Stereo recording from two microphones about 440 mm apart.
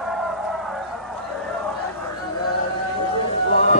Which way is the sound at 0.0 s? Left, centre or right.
Centre.